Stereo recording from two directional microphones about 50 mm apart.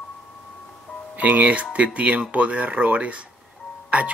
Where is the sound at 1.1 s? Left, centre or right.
Right.